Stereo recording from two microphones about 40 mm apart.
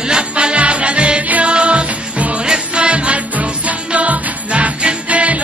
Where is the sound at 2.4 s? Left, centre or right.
Right.